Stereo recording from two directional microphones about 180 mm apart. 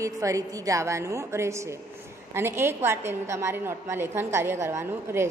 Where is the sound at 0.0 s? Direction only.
20° right (ahead or behind).